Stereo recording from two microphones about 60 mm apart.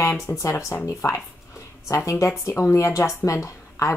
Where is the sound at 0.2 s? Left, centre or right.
Left.